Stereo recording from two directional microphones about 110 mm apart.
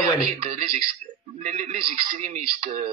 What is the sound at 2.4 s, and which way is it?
Speech, 70° right (ahead or behind).